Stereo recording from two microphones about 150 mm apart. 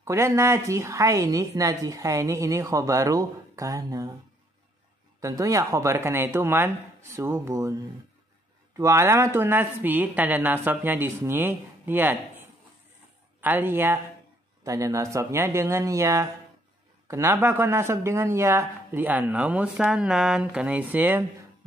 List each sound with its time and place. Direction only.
0.0 s a woman's voice: 20° right (ahead or behind)
5.2 s a woman's voice: 20° right (ahead or behind)